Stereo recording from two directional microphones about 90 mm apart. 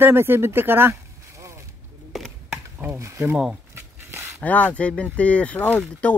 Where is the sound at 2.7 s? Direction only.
20° right (ahead or behind).